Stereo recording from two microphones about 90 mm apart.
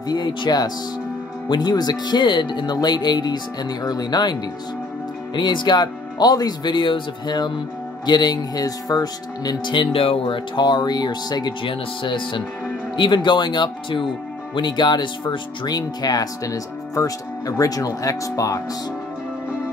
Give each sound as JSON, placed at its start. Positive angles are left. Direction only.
{"t": 0.1, "sound": "speech", "side_deg": 50}
{"t": 9.8, "sound": "speech", "side_deg": 80}
{"t": 11.6, "sound": "speech", "side_deg": 70}